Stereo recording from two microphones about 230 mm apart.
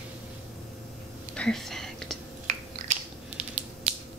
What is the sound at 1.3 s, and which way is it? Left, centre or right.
Whispering, centre.